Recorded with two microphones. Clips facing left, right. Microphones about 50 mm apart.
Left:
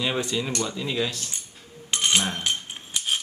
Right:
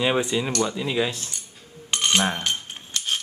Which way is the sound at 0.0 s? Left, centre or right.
Centre.